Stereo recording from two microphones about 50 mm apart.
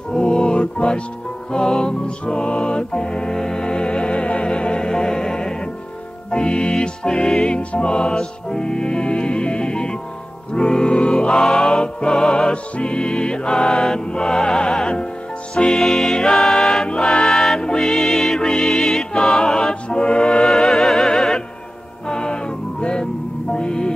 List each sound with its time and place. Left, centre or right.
0.1 s music: centre
16.8 s music: centre